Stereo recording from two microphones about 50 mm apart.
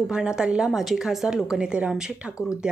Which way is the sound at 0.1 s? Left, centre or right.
Centre.